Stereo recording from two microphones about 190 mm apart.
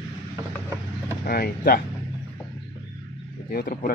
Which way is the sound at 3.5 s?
50° left (ahead or behind).